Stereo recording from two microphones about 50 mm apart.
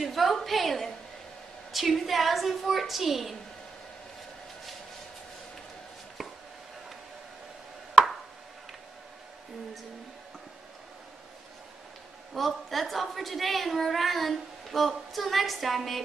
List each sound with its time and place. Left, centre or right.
0.0 s a woman's voice: centre
12.4 s a woman's voice: centre